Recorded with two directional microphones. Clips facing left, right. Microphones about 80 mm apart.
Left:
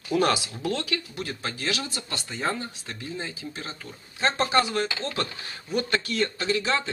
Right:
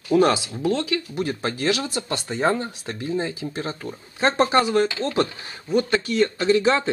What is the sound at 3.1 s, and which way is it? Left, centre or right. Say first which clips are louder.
Speech: right 9 dB; right.